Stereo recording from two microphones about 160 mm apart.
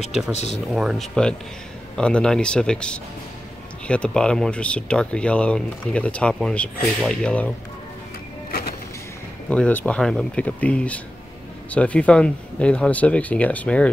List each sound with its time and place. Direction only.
0.3 s speech: 45° left (ahead or behind)
0.7 s speech: centre (ahead or behind)
8.5 s vehicle: 65° left (ahead or behind)
9.5 s speech: 10° left (ahead or behind)